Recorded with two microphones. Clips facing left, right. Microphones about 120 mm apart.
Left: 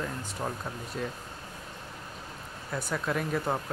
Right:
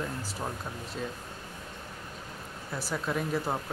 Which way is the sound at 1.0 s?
Centre (ahead or behind).